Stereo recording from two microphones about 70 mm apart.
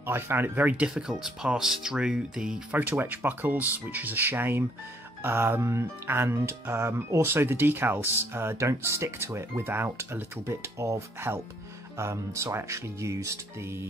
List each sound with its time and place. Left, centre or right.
0.0 s speech: right
0.8 s speech: centre
2.7 s speech: right